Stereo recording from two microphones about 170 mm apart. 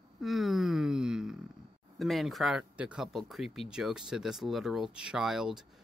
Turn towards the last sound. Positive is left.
turn(degrees=-5)  # may be behind; listen again after turning